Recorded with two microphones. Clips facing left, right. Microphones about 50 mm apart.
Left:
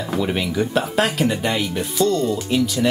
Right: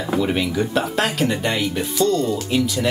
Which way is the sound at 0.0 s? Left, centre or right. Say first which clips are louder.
Right 2 dB; centre.